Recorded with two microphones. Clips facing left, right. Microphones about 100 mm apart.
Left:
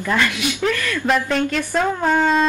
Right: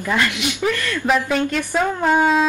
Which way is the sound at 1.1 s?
5° right (ahead or behind).